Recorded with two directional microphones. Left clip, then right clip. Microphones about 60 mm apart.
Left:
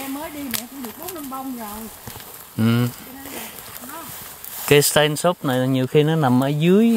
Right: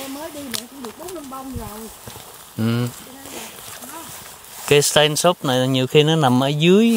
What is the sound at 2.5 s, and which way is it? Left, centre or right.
Speech, centre.